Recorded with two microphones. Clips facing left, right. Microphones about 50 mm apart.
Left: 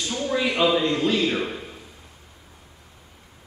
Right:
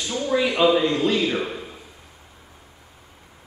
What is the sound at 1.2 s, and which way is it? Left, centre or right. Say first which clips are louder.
Speech: even; right.